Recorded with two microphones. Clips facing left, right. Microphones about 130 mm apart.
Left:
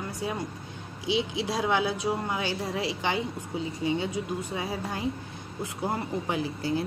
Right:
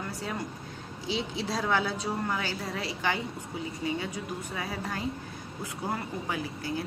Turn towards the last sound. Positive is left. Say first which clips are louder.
# left 5 dB
turn(degrees=25)  # may be behind; listen again after turning